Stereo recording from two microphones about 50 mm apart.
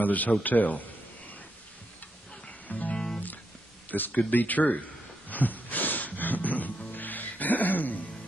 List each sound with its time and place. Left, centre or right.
0.0 s speech: left
2.7 s music: left
3.9 s speech: left
5.3 s a sound: left
6.9 s music: left